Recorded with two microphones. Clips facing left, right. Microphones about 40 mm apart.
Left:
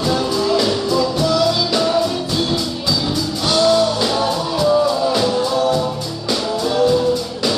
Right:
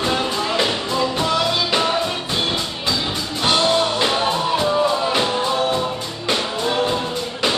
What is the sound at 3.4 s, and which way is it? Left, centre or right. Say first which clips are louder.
Music: left 2 dB; right.